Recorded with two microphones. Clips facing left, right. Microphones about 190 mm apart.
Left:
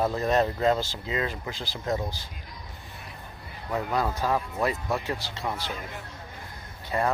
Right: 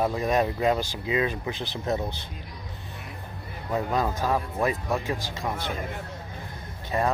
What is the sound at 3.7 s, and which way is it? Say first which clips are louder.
Speech: right 1 dB; 15° right (ahead or behind).